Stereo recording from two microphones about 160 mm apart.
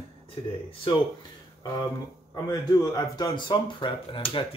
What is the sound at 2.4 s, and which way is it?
Speech, 25° left (ahead or behind).